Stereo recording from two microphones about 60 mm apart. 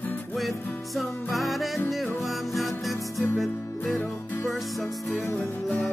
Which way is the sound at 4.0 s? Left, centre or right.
Left.